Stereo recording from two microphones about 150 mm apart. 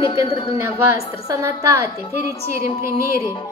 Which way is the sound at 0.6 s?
15° right (ahead or behind).